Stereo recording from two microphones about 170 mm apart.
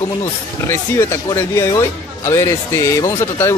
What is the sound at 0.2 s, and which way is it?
Speech, 15° left (ahead or behind).